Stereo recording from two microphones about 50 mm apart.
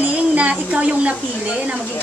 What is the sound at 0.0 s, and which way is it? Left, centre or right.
Child singing, right.